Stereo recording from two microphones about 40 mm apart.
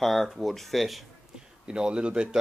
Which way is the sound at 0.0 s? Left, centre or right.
Centre.